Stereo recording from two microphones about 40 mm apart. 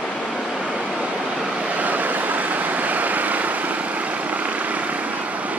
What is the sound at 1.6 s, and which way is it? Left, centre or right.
Vehicle, right.